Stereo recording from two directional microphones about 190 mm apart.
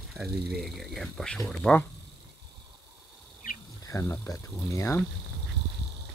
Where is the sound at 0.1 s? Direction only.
Centre (ahead or behind).